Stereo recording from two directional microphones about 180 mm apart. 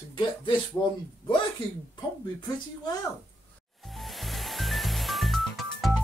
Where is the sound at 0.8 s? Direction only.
25° left (ahead or behind).